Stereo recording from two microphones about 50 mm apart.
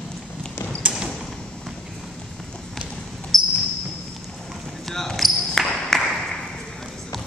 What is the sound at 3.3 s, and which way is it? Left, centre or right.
Basketball bounce, centre.